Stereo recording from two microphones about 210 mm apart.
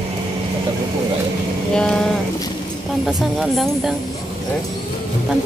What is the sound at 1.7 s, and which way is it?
Speech, 5° left (ahead or behind).